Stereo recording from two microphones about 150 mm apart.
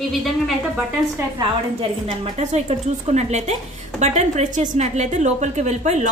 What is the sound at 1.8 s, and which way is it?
A woman's voice, 40° right (ahead or behind).